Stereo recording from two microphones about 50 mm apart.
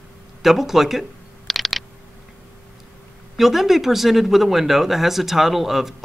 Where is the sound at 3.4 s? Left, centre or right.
Centre.